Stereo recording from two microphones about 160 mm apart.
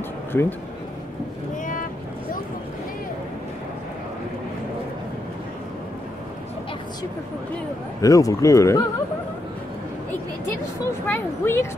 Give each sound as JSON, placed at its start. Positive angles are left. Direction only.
{"t": 0.3, "sound": "speech", "side_deg": 15}
{"t": 8.0, "sound": "speech", "side_deg": 20}
{"t": 11.1, "sound": "speech", "side_deg": 15}